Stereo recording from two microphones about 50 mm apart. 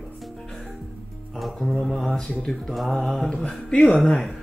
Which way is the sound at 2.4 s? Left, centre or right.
Centre.